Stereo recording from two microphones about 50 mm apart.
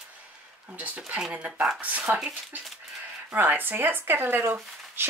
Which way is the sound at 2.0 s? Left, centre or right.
Centre.